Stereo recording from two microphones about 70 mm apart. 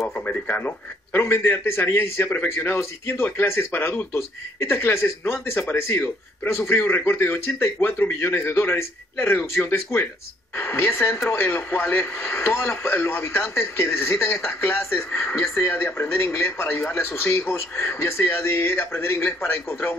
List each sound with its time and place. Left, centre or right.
0.2 s a man's voice: left
15.7 s a man's voice: left